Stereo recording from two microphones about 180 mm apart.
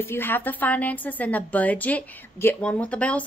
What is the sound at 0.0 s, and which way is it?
A woman's voice, 10° left (ahead or behind).